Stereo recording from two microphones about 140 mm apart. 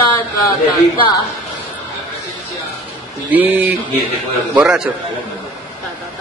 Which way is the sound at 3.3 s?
10° right (ahead or behind).